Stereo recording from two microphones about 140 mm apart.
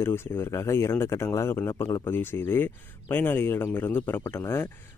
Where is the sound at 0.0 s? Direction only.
15° left (ahead or behind).